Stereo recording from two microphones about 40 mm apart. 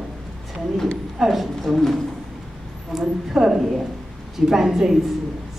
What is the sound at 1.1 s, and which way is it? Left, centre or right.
Speech, centre.